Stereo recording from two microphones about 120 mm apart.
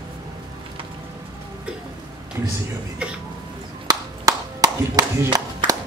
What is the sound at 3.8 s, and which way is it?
Clapping, 35° right (ahead or behind).